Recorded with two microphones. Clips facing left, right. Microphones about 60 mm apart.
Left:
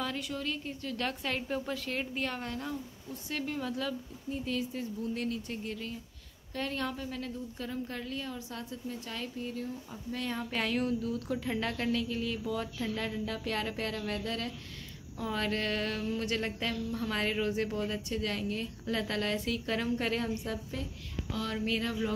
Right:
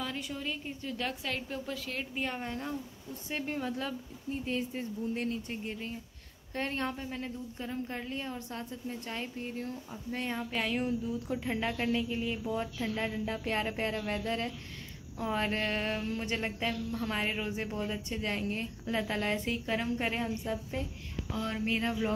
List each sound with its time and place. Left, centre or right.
0.2 s a woman's voice: centre
2.1 s speech: centre
2.4 s a woman's voice: right
10.5 s a woman's voice: centre
10.8 s speech: centre
18.0 s a woman's voice: right
19.6 s speech: centre